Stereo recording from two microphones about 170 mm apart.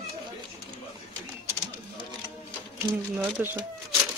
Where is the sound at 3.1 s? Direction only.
10° right (ahead or behind).